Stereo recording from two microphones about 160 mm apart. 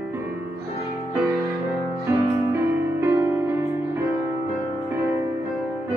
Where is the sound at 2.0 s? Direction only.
15° right (ahead or behind).